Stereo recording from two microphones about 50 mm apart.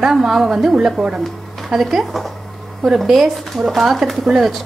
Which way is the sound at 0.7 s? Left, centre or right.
Centre.